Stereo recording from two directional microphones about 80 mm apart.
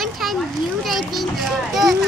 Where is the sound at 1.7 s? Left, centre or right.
Centre.